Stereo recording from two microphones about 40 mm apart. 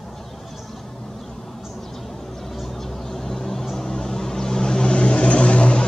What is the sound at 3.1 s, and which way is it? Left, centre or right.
Vehicle, centre.